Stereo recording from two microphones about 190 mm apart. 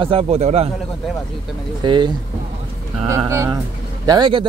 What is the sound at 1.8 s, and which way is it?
Speech, 25° right (ahead or behind).